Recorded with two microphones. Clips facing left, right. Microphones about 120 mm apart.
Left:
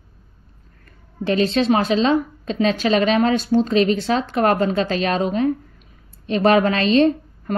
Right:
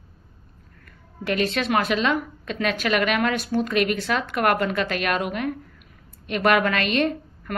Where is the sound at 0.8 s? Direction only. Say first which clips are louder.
Left 6 dB; 30° left (ahead or behind).